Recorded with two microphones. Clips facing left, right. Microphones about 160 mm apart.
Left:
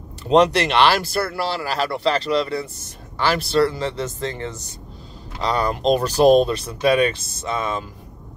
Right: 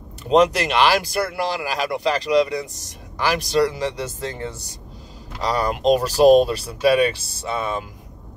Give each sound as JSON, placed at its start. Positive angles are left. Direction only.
{"t": 0.7, "sound": "speech", "side_deg": -10}